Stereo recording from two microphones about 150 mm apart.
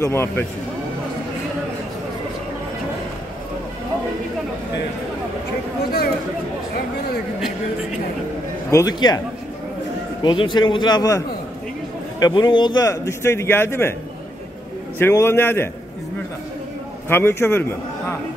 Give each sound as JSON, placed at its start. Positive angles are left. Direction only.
{"t": 0.0, "sound": "a man's voice", "side_deg": 15}
{"t": 8.6, "sound": "a man's voice", "side_deg": 20}
{"t": 10.2, "sound": "a man's voice", "side_deg": 30}
{"t": 15.0, "sound": "a man's voice", "side_deg": 15}
{"t": 17.1, "sound": "a man's voice", "side_deg": 15}